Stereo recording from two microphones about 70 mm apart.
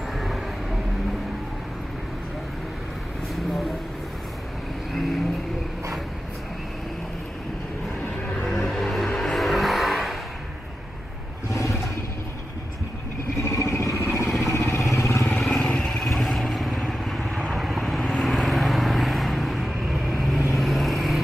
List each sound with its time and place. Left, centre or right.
0.2 s a sound: centre
8.5 s vehicle: centre
11.5 s vehicle: left
13.4 s vehicle: left
15.4 s vehicle: centre